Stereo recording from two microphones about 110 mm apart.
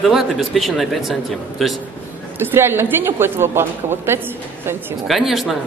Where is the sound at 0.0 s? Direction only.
Centre (ahead or behind).